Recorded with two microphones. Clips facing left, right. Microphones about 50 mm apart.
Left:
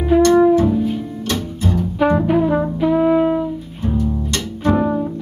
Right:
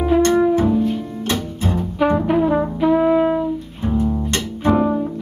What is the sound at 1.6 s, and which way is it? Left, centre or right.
Music, centre.